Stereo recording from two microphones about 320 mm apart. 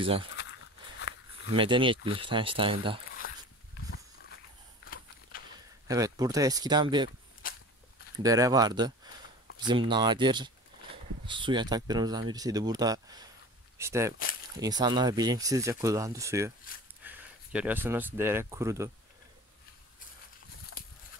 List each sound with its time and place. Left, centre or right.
0.0 s speech: centre
1.5 s speech: centre
4.8 s a sound: left
5.9 s speech: centre
8.2 s speech: centre